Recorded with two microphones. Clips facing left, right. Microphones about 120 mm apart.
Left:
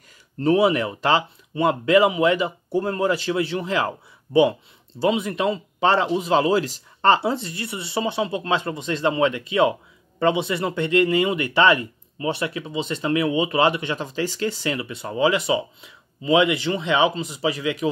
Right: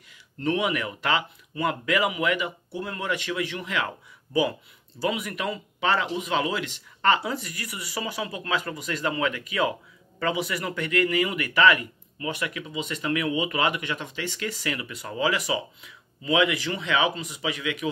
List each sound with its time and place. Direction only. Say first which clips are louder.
0.4 s speech: left 8 dB; 30° left (ahead or behind)